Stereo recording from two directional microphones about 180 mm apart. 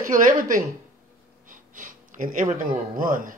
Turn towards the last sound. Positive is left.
turn(degrees=-50)  # may be behind; listen again after turning